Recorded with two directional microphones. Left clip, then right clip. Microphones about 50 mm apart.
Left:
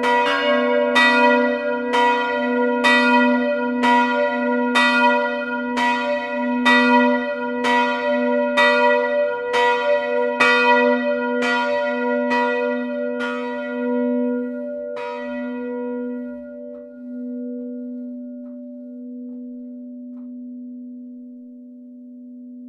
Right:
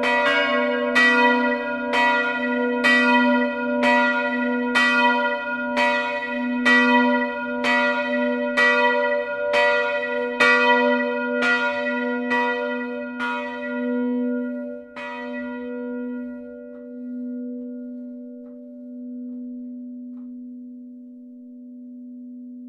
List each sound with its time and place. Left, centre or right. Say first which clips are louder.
0.0 s church bell: left 2 dB; left